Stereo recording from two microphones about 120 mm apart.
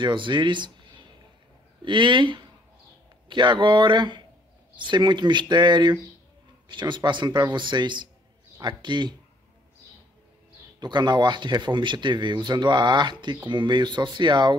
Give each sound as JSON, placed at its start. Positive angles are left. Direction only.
{"t": 0.0, "sound": "speech", "side_deg": -40}
{"t": 10.8, "sound": "speech", "side_deg": -35}